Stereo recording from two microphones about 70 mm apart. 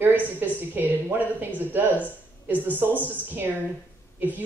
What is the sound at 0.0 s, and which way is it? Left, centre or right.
A woman's voice, right.